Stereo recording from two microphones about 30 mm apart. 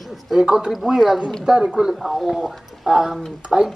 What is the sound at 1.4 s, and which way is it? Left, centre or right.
Speech, right.